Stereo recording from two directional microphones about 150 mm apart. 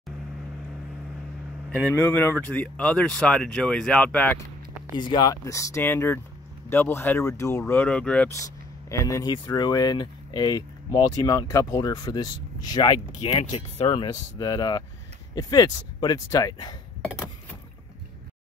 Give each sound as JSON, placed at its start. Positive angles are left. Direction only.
{"t": 1.7, "sound": "speech", "side_deg": 10}
{"t": 4.9, "sound": "speech", "side_deg": 30}
{"t": 7.8, "sound": "speech", "side_deg": 5}
{"t": 8.3, "sound": "speech", "side_deg": 20}
{"t": 13.4, "sound": "speech", "side_deg": 40}